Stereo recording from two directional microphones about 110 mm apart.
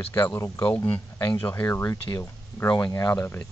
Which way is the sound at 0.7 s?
15° left (ahead or behind).